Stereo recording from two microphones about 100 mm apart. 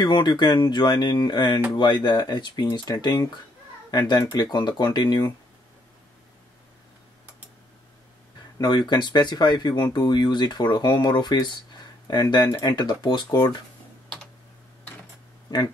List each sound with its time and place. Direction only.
0.0 s speech: 50° left (ahead or behind)
8.5 s speech: 45° left (ahead or behind)